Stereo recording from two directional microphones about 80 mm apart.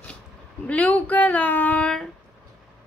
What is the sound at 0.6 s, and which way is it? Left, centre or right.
Speech, centre.